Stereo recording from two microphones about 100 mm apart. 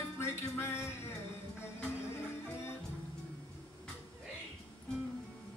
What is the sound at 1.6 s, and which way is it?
Music, 25° left (ahead or behind).